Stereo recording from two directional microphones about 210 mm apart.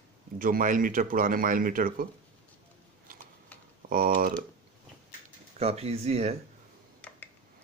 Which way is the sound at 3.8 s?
40° right (ahead or behind).